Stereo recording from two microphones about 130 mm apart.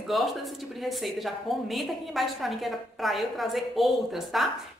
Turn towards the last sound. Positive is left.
turn(degrees=0)  # may be behind; listen again after turning